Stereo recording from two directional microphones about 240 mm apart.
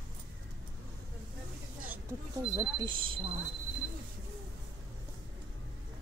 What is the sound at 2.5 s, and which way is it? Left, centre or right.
Speech, centre.